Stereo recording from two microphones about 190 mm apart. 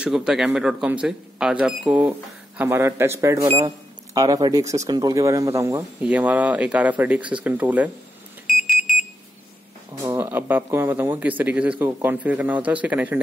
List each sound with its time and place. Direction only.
0.0 s a man's voice: 5° right (ahead or behind)
3.4 s speech: 30° right (ahead or behind)
4.1 s speech: 20° right (ahead or behind)
10.0 s speech: 10° right (ahead or behind)